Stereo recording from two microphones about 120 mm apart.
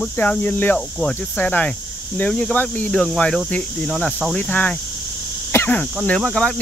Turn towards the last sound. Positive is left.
turn(degrees=5)  # may be behind; listen again after turning